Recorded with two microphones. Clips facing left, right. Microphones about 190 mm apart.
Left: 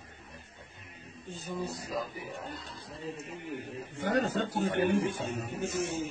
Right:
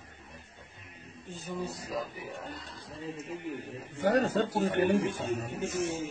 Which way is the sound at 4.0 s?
40° right (ahead or behind).